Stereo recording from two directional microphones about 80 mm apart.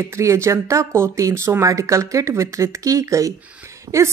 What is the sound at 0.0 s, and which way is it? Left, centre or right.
A woman's voice, right.